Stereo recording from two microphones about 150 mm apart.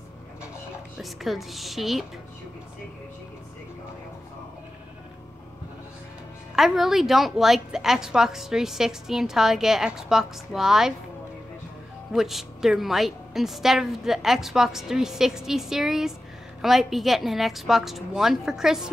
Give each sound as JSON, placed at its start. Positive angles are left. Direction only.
{"t": 0.9, "sound": "a woman's voice", "side_deg": 0}
{"t": 6.5, "sound": "a woman's voice", "side_deg": 0}
{"t": 12.1, "sound": "a woman's voice", "side_deg": 0}